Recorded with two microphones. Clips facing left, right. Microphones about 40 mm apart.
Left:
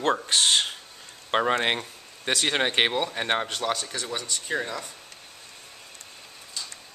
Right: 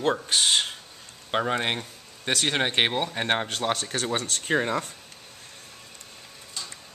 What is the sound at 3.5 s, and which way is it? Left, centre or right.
Speech, right.